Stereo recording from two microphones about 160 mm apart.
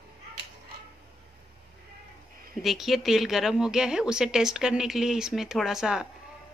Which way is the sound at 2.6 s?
Centre (ahead or behind).